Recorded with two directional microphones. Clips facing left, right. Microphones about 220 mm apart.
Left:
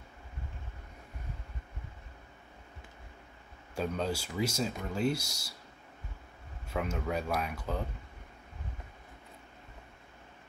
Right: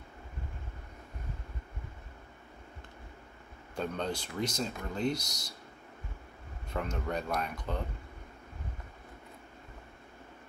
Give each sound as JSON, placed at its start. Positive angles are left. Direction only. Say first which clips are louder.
{"t": 3.7, "sound": "speech", "louder": "left 1 dB", "side_deg": 5}
{"t": 6.7, "sound": "speech", "louder": "left 1 dB", "side_deg": 5}